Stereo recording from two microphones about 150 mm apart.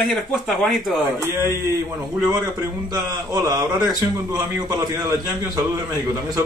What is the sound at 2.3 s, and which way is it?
A man's voice, 25° right (ahead or behind).